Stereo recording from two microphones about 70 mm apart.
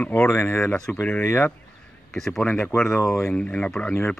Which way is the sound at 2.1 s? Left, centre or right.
Centre.